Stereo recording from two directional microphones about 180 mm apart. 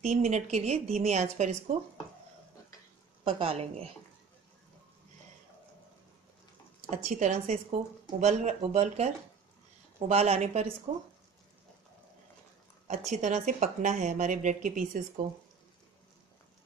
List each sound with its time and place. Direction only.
0.0 s a woman's voice: 40° right (ahead or behind)
3.3 s a woman's voice: 30° right (ahead or behind)
6.9 s a woman's voice: 40° right (ahead or behind)
13.1 s a woman's voice: 40° right (ahead or behind)